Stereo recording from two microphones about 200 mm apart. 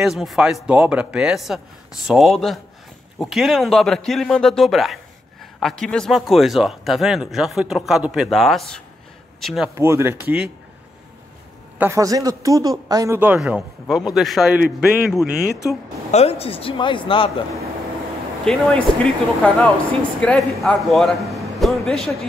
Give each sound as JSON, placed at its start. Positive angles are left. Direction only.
{"t": 0.0, "sound": "speech", "side_deg": 0}
{"t": 9.8, "sound": "speech", "side_deg": -15}
{"t": 11.8, "sound": "speech", "side_deg": -15}
{"t": 16.1, "sound": "speech", "side_deg": 30}
{"t": 18.4, "sound": "a man's voice", "side_deg": 0}